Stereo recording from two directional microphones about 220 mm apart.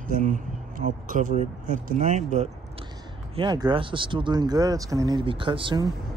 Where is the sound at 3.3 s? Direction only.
20° right (ahead or behind).